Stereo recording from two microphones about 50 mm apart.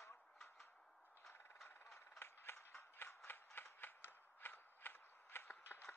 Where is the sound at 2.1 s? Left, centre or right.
Left.